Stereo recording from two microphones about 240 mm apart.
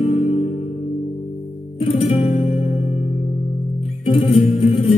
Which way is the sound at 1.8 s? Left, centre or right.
Left.